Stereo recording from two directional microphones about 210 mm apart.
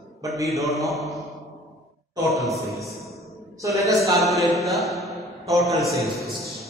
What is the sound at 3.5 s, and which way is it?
Speech, 15° right (ahead or behind).